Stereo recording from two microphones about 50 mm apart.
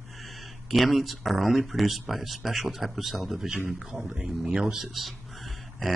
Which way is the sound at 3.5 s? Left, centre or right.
Right.